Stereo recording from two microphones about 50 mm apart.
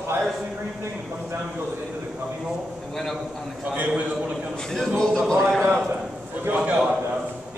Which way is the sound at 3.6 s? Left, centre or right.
Right.